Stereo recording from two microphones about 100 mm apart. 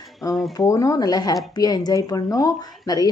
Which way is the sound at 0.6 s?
35° left (ahead or behind).